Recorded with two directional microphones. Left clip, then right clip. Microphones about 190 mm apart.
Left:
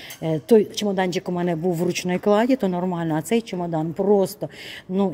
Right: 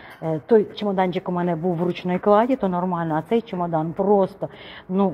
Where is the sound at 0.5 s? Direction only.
40° left (ahead or behind).